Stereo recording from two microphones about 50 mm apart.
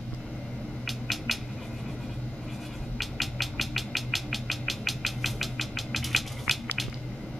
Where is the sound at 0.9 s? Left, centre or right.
Centre.